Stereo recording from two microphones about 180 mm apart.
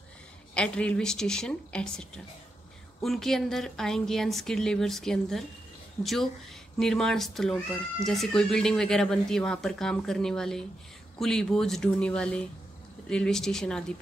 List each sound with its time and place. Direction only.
0.6 s speech: 5° left (ahead or behind)